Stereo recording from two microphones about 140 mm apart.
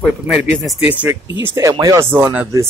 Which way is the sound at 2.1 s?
15° right (ahead or behind).